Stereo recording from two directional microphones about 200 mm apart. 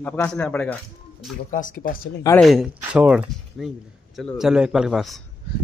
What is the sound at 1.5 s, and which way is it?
Speech, 40° left (ahead or behind).